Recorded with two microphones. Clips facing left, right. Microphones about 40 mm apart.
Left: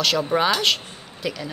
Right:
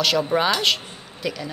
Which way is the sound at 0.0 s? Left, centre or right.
Centre.